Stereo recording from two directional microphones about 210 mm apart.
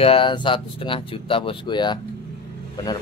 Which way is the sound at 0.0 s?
25° left (ahead or behind).